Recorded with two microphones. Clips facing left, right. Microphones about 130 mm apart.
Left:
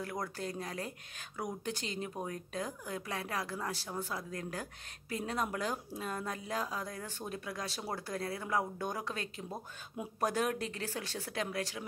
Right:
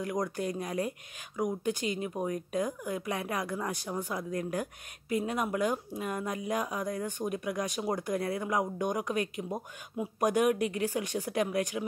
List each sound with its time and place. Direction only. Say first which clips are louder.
0.0 s speech: right 7 dB; 15° right (ahead or behind)